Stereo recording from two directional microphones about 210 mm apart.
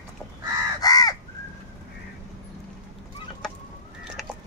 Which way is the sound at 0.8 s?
15° left (ahead or behind).